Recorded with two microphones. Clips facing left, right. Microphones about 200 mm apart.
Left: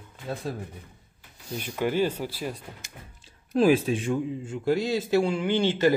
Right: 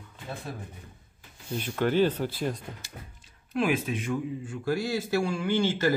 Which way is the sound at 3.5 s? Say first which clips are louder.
Left 6 dB; 35° left (ahead or behind).